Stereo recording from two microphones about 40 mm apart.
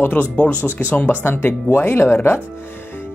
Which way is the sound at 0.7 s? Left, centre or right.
Left.